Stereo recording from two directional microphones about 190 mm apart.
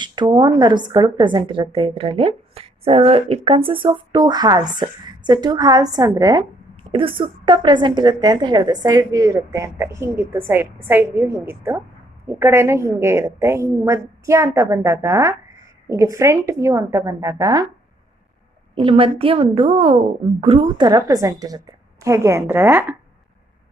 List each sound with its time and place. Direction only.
0.0 s a woman's voice: 25° right (ahead or behind)
18.8 s a woman's voice: 30° right (ahead or behind); by 22.9 s 10° right (ahead or behind)